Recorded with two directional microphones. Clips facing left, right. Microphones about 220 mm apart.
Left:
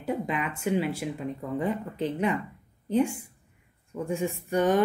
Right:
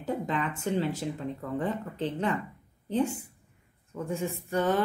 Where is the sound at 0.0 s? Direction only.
10° left (ahead or behind).